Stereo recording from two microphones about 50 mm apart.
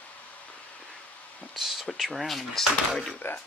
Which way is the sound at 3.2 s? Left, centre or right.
Left.